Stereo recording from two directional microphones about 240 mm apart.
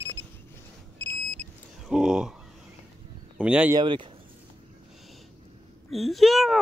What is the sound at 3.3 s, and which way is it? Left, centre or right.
Speech, centre.